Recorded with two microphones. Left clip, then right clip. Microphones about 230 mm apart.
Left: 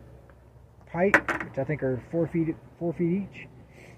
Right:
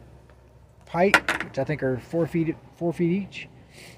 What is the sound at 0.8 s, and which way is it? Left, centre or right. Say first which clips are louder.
Speech: right 3 dB; right.